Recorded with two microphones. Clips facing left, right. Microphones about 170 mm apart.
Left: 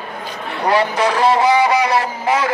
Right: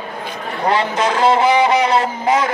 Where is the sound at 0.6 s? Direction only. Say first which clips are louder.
Left 1 dB; 25° right (ahead or behind).